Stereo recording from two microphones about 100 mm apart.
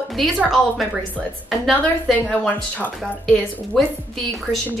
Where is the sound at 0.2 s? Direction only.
Centre (ahead or behind).